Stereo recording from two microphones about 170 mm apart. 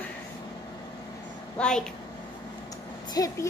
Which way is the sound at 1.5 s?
5° left (ahead or behind).